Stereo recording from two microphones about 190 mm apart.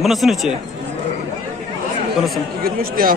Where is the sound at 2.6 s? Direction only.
50° right (ahead or behind).